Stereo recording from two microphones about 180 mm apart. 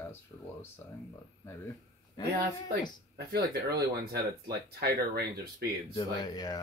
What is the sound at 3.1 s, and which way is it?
Speech, 60° right (ahead or behind).